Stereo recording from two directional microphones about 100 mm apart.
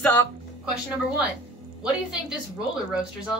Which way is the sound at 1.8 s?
10° right (ahead or behind).